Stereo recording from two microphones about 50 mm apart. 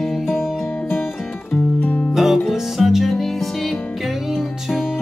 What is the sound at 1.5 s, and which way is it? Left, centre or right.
Music, left.